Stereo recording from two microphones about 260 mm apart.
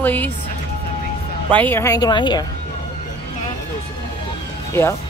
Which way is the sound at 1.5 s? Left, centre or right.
Centre.